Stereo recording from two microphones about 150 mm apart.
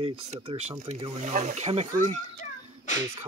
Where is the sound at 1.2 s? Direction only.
55° right (ahead or behind).